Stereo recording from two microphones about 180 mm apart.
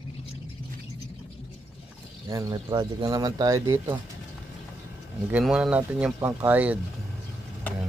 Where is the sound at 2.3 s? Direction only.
20° right (ahead or behind).